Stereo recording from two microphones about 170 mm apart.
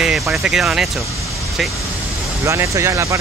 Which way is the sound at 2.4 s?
15° right (ahead or behind).